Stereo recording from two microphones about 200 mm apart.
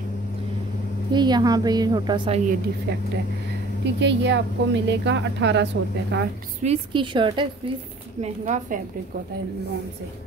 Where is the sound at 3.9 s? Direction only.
60° right (ahead or behind).